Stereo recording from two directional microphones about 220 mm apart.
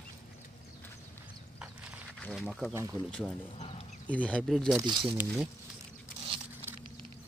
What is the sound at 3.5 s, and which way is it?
Speech, 25° left (ahead or behind).